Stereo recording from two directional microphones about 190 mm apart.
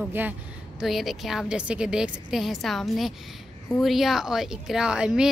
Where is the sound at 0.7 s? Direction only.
Centre (ahead or behind).